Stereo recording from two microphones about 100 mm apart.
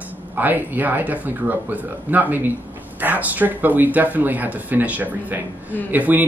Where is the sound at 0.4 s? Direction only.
20° right (ahead or behind).